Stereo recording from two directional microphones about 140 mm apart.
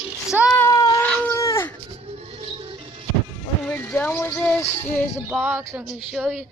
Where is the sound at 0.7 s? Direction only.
30° left (ahead or behind).